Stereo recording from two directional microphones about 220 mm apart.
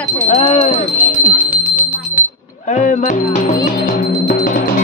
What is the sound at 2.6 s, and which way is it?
Speech, 35° left (ahead or behind).